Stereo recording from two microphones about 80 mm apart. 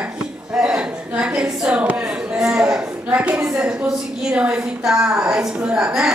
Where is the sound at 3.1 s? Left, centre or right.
Centre.